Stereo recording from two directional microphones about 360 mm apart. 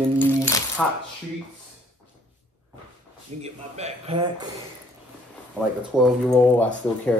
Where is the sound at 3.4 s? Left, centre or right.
Centre.